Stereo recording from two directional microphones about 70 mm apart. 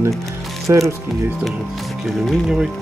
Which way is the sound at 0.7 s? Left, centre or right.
Right.